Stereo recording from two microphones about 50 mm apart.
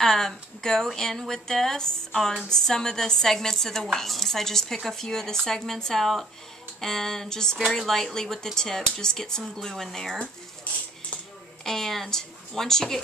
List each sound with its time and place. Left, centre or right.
0.0 s speech: centre
10.1 s a sound: left
11.6 s speech: centre